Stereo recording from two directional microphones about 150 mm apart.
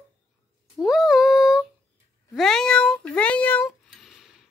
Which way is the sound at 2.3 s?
5° left (ahead or behind).